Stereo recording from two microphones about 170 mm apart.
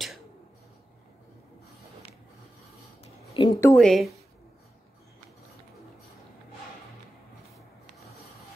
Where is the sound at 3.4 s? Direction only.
30° left (ahead or behind).